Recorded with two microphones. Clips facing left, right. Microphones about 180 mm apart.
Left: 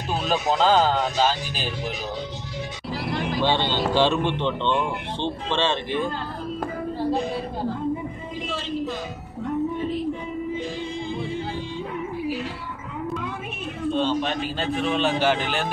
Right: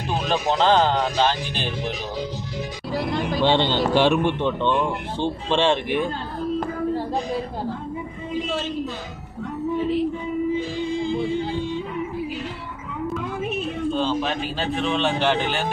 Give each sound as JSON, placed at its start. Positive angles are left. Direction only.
{"t": 0.3, "sound": "speech", "side_deg": 5}
{"t": 3.4, "sound": "speech", "side_deg": -20}
{"t": 13.9, "sound": "speech", "side_deg": 0}